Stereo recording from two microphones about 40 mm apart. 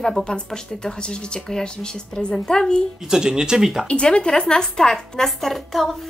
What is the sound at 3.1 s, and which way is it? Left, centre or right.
Speech, centre.